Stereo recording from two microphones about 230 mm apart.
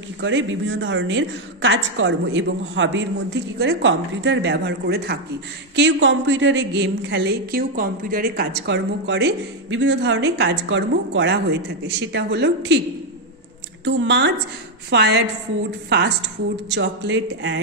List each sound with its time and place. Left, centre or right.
0.2 s a woman's voice: right
13.8 s a woman's voice: right
16.6 s a woman's voice: right